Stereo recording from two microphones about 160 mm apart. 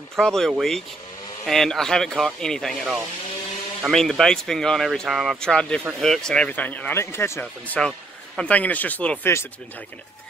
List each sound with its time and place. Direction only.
0.2 s speech: 5° left (ahead or behind)